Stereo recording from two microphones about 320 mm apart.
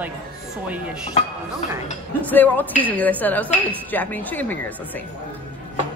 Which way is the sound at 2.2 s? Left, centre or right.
Centre.